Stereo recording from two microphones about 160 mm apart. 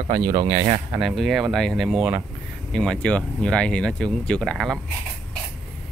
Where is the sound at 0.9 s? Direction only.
Centre (ahead or behind).